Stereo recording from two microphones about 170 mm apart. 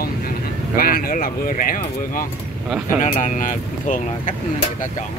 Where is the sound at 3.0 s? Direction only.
50° left (ahead or behind).